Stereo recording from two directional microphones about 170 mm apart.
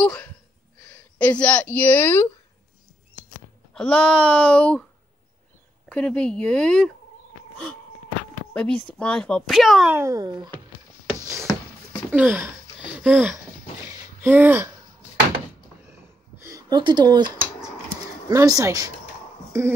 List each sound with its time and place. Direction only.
0.0 s speech: 5° left (ahead or behind)
1.1 s a sound: 10° left (ahead or behind)
3.7 s a sound: 5° left (ahead or behind)
5.9 s speech: 5° left (ahead or behind)
8.5 s a sound: 5° left (ahead or behind)
8.9 s speech: 5° left (ahead or behind)
9.9 s a child's voice: 20° right (ahead or behind)
12.1 s speech: 10° right (ahead or behind)
16.4 s a child's voice: 20° right (ahead or behind)